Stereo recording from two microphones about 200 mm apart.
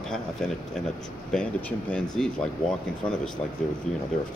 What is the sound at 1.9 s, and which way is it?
Speech, 5° left (ahead or behind).